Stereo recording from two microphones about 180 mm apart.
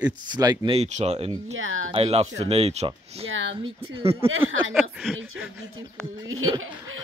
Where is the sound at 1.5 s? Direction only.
90° right.